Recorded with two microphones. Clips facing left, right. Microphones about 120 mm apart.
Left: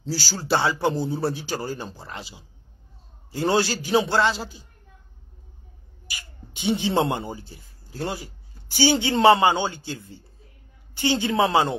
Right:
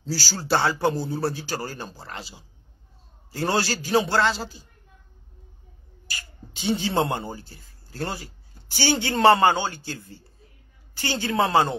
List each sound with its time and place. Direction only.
0.0 s a man's voice: 15° left (ahead or behind)
6.0 s speech: 15° left (ahead or behind)